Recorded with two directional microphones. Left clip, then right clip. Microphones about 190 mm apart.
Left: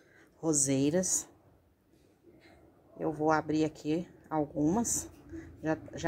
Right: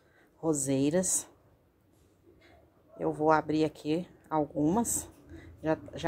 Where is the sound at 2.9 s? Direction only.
Centre (ahead or behind).